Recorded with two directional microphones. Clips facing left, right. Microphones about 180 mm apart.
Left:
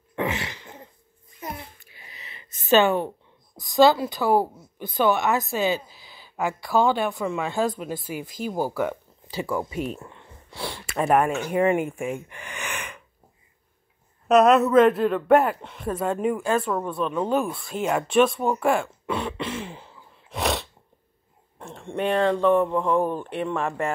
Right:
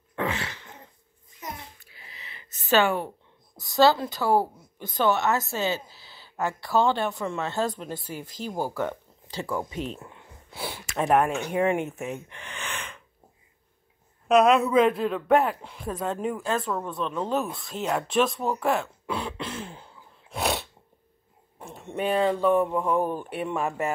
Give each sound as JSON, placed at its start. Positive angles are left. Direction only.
{"t": 0.1, "sound": "throat clearing", "side_deg": 15}
{"t": 1.8, "sound": "a sound", "side_deg": 20}
{"t": 3.5, "sound": "a woman's voice", "side_deg": 15}
{"t": 10.0, "sound": "speech", "side_deg": -5}
{"t": 14.2, "sound": "a woman's voice", "side_deg": 0}
{"t": 17.6, "sound": "throat clearing", "side_deg": 5}
{"t": 21.5, "sound": "speech", "side_deg": -5}